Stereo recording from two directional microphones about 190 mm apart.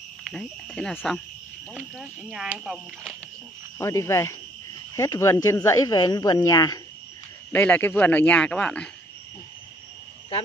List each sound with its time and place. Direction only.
0.2 s cricket: 5° left (ahead or behind)
1.7 s a man's voice: 5° left (ahead or behind)
2.6 s cricket: centre (ahead or behind)
3.7 s a man's voice: 15° left (ahead or behind)